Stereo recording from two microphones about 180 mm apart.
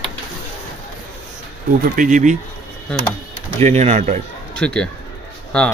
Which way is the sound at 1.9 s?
45° right (ahead or behind).